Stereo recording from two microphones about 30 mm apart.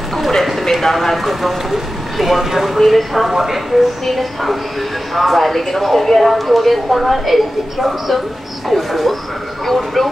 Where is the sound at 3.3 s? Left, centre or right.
Centre.